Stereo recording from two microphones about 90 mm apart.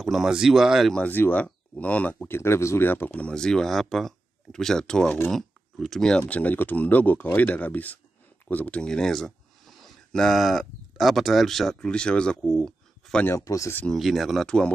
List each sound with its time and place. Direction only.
0.0 s speech: 5° right (ahead or behind)
0.9 s speech: 20° left (ahead or behind)
13.3 s speech: 35° left (ahead or behind)
13.8 s speech: centre (ahead or behind)